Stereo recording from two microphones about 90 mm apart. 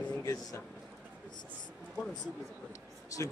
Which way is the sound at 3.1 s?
40° left (ahead or behind).